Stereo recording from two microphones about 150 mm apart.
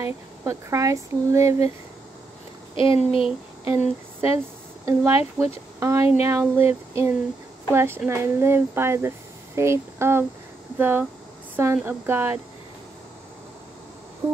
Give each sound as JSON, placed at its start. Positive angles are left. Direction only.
{"t": 0.0, "sound": "speech", "side_deg": -20}
{"t": 2.7, "sound": "speech", "side_deg": 35}
{"t": 3.3, "sound": "speech", "side_deg": -15}
{"t": 4.8, "sound": "speech", "side_deg": -15}